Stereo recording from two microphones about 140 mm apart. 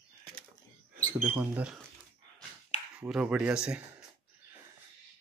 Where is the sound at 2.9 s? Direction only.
10° right (ahead or behind).